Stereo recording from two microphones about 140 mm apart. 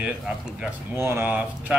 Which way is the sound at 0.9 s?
15° right (ahead or behind).